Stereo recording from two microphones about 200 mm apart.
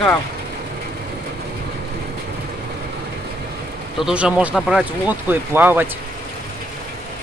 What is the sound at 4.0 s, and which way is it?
Speech, 5° right (ahead or behind).